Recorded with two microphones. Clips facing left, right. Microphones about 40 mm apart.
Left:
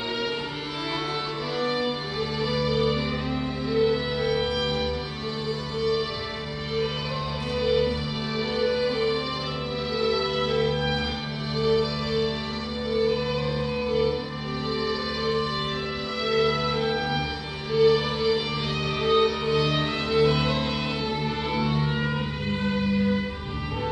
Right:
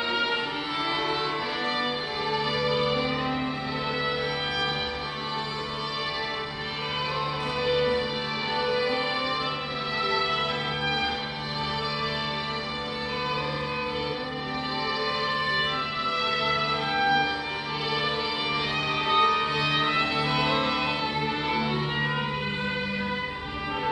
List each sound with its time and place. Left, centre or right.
2.3 s music: centre
7.6 s music: centre
15.2 s music: centre
20.2 s music: centre